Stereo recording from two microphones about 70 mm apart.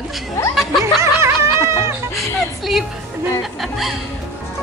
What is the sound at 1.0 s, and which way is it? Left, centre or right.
Snicker, right.